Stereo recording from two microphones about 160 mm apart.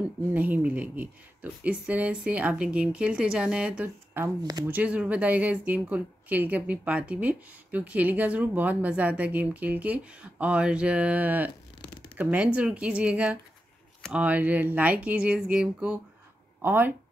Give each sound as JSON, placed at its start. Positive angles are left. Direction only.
{"t": 0.3, "sound": "speech", "side_deg": -10}
{"t": 4.4, "sound": "speech", "side_deg": -25}
{"t": 4.6, "sound": "speech", "side_deg": -10}